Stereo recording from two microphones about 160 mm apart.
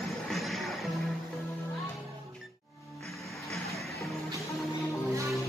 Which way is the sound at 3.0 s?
Centre (ahead or behind).